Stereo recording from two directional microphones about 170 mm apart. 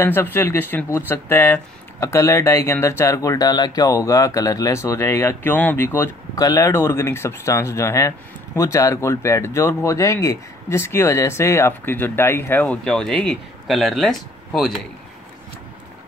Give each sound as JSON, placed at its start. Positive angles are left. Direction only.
{"t": 0.0, "sound": "speech", "side_deg": 15}